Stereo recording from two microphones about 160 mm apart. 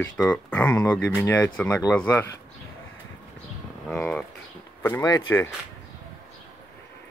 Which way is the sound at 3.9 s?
10° left (ahead or behind).